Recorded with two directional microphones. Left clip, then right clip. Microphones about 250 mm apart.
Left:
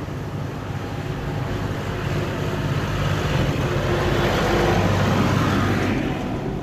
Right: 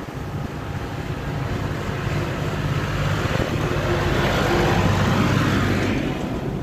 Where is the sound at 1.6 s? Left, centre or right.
Centre.